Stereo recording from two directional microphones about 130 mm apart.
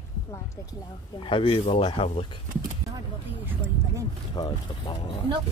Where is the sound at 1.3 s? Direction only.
40° left (ahead or behind).